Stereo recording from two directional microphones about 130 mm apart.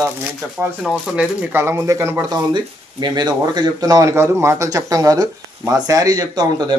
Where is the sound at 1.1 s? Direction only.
20° right (ahead or behind).